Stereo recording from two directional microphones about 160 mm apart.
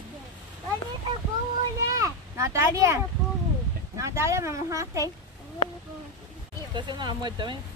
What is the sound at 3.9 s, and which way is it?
Speech, 20° right (ahead or behind).